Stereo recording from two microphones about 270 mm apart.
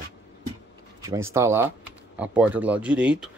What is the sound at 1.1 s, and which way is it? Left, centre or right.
Speech, centre.